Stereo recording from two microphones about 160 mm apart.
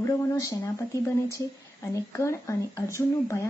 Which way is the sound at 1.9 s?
20° left (ahead or behind).